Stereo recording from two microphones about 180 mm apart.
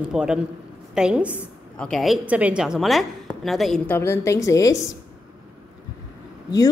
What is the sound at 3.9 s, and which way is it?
Speech, 15° left (ahead or behind).